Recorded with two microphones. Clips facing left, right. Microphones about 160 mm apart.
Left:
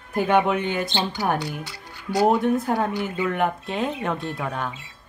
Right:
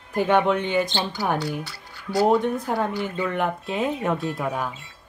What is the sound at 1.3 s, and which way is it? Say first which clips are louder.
Speech: right 1 dB; 20° left (ahead or behind).